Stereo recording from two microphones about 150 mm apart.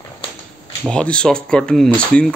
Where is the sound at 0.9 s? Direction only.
5° left (ahead or behind).